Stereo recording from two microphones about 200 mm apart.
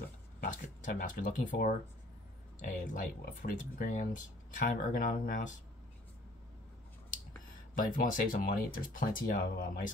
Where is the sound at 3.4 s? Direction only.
40° left (ahead or behind).